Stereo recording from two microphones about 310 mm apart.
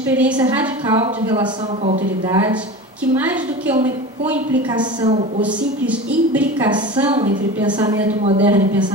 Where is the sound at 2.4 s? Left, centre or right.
Centre.